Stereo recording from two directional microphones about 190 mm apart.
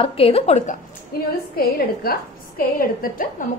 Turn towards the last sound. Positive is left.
turn(degrees=50)  # may be behind; listen again after turning